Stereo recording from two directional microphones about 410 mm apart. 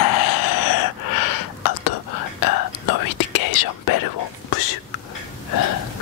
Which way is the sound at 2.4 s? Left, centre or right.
Left.